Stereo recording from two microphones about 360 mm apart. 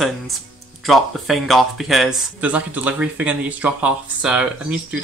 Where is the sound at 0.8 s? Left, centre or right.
Centre.